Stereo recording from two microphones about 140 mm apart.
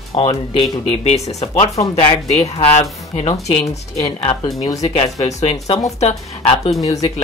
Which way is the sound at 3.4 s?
50° left (ahead or behind).